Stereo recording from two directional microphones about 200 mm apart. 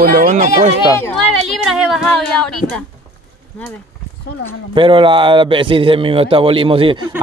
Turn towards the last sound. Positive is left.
turn(degrees=-25)  # may be behind; listen again after turning